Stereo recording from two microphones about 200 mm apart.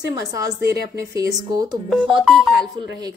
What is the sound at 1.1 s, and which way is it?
Speech, 15° right (ahead or behind).